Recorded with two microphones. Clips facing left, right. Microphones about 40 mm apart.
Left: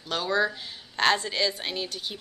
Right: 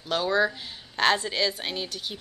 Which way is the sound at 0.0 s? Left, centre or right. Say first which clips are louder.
Right 2 dB; centre.